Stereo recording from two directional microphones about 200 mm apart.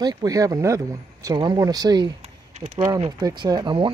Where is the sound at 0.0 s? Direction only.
20° right (ahead or behind).